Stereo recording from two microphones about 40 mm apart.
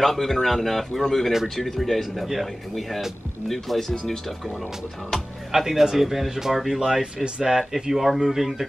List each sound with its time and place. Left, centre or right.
0.0 s speech: centre
3.9 s speech: centre
5.5 s speech: centre